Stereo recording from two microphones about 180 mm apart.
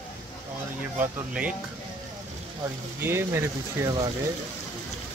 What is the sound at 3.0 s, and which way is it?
Speech, 15° right (ahead or behind).